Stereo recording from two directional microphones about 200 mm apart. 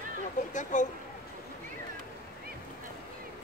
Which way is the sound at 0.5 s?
40° left (ahead or behind).